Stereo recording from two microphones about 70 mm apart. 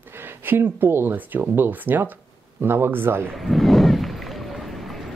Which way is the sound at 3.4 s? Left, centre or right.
Centre.